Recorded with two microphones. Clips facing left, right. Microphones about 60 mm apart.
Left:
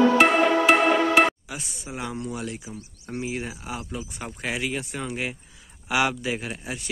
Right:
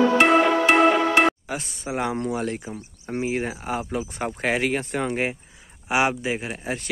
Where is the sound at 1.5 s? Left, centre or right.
Right.